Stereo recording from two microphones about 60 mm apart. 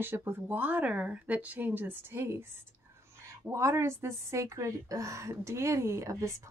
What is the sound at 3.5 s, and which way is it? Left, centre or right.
A woman's voice, right.